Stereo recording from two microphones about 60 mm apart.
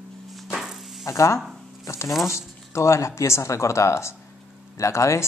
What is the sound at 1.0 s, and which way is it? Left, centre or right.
Speech, left.